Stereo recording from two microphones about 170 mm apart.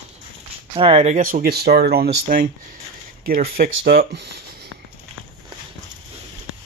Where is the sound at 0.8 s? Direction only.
35° right (ahead or behind); by 4.4 s 80° right.